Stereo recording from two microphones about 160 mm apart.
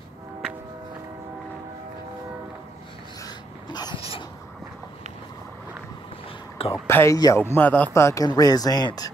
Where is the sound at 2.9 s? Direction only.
25° left (ahead or behind).